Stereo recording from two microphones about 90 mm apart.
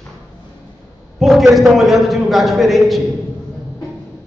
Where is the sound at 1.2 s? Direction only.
Centre (ahead or behind).